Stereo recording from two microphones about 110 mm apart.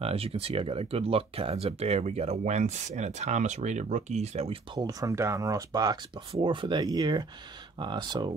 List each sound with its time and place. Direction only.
0.0 s speech: 65° right (ahead or behind); by 4.6 s 80° right
4.7 s speech: 30° right (ahead or behind)
6.4 s speech: 50° right (ahead or behind)